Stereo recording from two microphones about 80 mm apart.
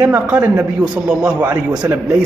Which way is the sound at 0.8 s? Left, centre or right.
Centre.